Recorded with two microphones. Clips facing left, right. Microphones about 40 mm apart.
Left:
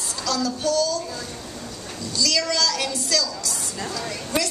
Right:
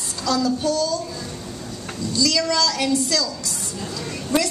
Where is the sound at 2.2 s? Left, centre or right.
Centre.